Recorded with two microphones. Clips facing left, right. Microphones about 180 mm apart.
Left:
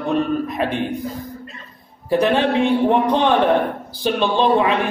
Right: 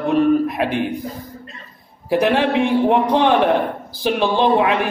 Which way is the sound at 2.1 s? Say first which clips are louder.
Even; 10° right (ahead or behind).